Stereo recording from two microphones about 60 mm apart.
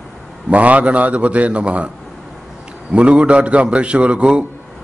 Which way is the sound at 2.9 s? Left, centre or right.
Centre.